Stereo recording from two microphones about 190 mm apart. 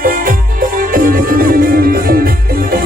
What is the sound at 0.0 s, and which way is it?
Music, 45° right (ahead or behind).